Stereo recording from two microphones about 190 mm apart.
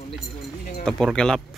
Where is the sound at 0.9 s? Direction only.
5° left (ahead or behind).